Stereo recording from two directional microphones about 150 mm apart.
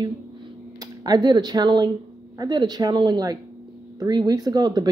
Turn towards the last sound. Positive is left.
turn(degrees=-25)  # may be behind; listen again after turning